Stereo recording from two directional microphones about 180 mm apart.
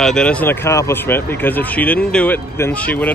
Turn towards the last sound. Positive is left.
turn(degrees=10)  # may be behind; listen again after turning